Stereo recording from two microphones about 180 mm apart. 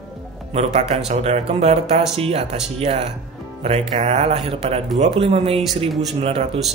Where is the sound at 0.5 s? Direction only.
35° right (ahead or behind).